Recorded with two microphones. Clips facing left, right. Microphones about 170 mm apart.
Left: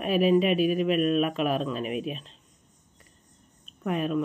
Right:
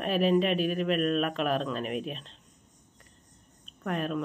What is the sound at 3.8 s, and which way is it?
Speech, 5° left (ahead or behind).